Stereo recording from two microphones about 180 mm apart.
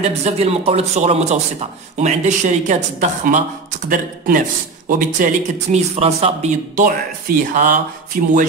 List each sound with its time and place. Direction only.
0.0 s a man's voice: 35° right (ahead or behind)